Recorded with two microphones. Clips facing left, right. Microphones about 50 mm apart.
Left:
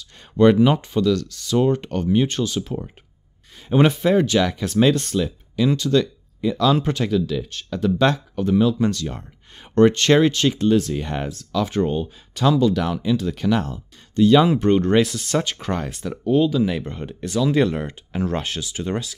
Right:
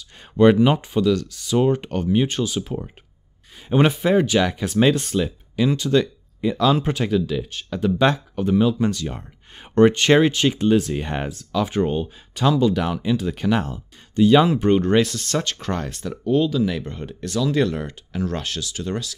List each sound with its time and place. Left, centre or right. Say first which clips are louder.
0.0 s speech: even; centre
13.9 s a sound: even; centre
14.6 s speech: even; centre; by 19.1 s left